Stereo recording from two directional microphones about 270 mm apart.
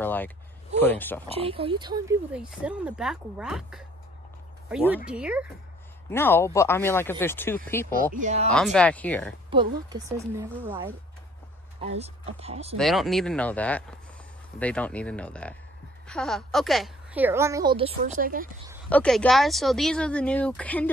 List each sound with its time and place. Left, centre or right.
0.0 s a sound: centre
0.7 s speech: centre
1.3 s speech: centre
2.3 s speech: centre
6.0 s speech: centre
7.9 s speech: right
8.7 s speech: centre
9.5 s a woman's voice: centre
12.4 s speech: right
12.7 s a woman's voice: centre; by 18.5 s right
18.9 s speech: centre